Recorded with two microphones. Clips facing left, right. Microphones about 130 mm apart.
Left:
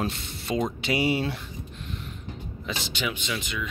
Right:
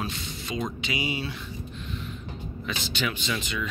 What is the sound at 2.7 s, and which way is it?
Speech, 20° left (ahead or behind).